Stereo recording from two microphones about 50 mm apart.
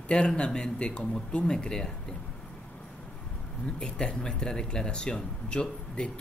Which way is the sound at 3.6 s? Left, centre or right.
Centre.